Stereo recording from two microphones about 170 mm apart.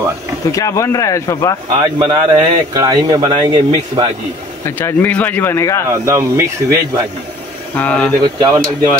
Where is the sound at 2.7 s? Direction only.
20° right (ahead or behind).